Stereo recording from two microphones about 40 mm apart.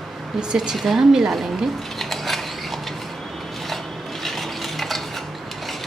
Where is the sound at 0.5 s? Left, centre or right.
Centre.